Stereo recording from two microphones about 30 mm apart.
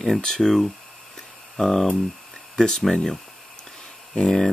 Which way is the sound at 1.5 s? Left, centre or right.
Centre.